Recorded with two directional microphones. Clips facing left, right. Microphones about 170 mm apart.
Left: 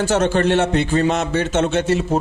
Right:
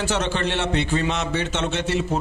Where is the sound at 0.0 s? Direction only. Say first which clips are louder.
Left 7 dB; 45° left (ahead or behind).